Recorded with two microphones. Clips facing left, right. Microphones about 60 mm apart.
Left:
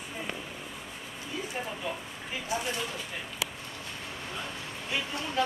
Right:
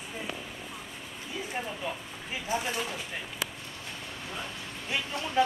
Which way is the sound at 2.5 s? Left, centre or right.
Right.